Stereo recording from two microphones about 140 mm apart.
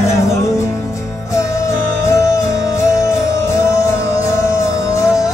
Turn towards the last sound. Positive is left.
turn(degrees=20)  # may be behind; listen again after turning